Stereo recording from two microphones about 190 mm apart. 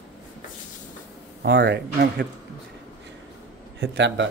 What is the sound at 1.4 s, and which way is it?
Speech, 60° right (ahead or behind).